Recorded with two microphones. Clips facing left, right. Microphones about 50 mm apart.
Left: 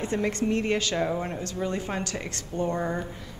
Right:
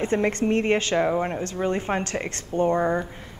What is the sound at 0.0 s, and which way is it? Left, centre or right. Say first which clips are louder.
A woman's voice: right 4 dB; right.